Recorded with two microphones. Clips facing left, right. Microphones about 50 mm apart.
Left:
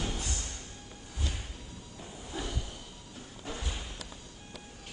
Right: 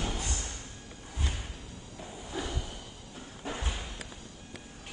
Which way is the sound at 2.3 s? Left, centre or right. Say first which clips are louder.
Right 2 dB; right.